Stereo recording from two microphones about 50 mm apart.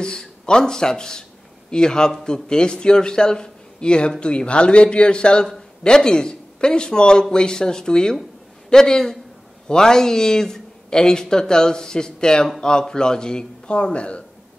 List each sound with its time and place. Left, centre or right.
0.0 s a man's voice: centre